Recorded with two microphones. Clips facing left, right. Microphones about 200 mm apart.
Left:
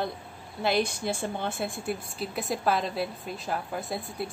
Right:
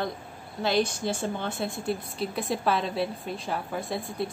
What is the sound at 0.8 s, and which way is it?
A woman's voice, 60° left (ahead or behind).